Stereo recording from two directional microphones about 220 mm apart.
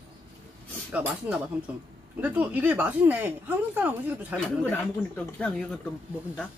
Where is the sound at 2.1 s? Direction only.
5° right (ahead or behind).